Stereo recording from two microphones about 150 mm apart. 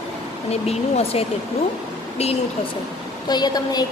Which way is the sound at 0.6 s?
40° left (ahead or behind).